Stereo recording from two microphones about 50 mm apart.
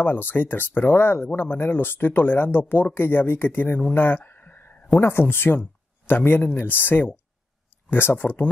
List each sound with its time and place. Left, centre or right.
0.0 s speech: left
4.2 s a sound: left
5.0 s speech: left
8.2 s speech: left